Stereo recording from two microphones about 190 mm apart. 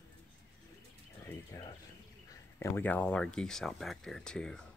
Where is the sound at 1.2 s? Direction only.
15° left (ahead or behind).